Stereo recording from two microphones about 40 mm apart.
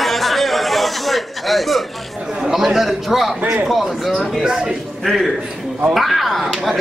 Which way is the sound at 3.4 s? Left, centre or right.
Right.